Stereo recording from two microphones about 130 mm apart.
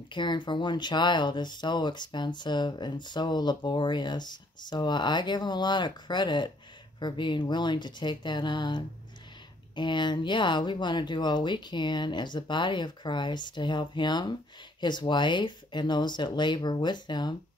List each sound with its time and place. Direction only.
0.1 s speech: 35° left (ahead or behind)